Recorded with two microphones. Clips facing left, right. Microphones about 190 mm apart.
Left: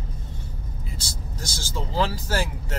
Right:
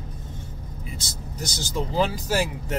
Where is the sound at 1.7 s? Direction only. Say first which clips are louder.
Right 2 dB; 15° right (ahead or behind).